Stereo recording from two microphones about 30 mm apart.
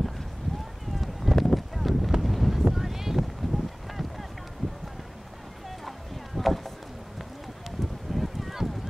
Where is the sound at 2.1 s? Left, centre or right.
Centre.